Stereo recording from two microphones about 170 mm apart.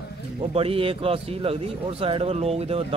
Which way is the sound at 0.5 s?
35° right (ahead or behind).